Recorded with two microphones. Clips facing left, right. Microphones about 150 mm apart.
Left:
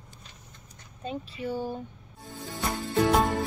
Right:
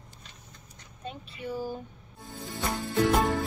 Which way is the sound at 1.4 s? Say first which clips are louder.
Left 2 dB; 30° left (ahead or behind).